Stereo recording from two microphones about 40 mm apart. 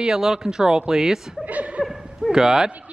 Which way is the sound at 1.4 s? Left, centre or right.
Right.